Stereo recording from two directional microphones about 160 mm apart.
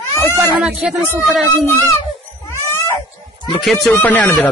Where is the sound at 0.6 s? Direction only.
Centre (ahead or behind).